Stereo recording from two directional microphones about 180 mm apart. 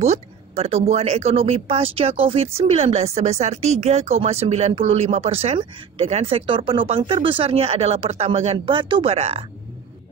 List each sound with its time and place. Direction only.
0.0 s speech: 35° right (ahead or behind)